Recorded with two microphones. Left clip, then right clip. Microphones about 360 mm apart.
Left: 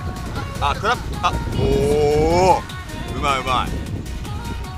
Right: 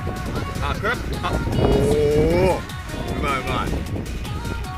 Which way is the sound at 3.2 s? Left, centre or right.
Centre.